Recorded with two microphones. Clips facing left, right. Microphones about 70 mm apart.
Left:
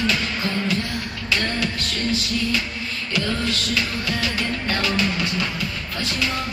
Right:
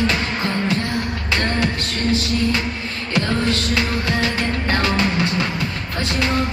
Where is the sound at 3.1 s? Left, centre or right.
Right.